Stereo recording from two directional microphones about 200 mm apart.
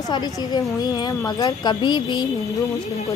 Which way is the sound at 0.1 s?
20° left (ahead or behind).